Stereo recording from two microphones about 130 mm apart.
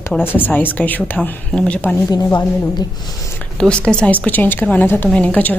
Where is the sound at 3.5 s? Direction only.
5° left (ahead or behind).